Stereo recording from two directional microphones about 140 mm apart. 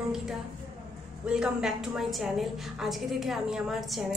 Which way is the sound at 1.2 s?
5° right (ahead or behind).